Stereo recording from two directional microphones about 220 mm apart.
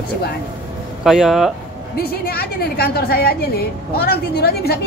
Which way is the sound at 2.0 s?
45° left (ahead or behind).